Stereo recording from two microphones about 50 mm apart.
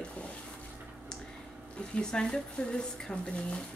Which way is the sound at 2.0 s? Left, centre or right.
Centre.